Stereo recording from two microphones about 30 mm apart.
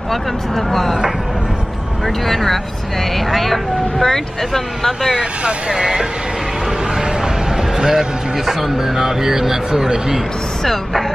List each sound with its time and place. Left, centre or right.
0.1 s speech: centre
2.0 s speech: centre
5.7 s speech: right
7.0 s a sound: centre
8.5 s speech: centre
10.6 s speech: centre